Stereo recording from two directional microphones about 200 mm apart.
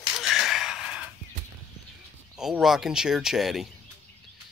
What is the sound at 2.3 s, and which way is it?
Speech, 5° right (ahead or behind).